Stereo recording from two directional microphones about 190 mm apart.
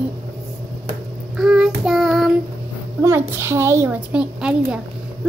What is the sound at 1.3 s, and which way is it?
Child singing, 5° right (ahead or behind).